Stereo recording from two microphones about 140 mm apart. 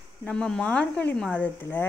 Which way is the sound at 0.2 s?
5° left (ahead or behind).